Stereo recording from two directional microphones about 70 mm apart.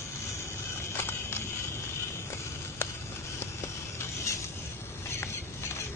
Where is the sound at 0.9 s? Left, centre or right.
Left.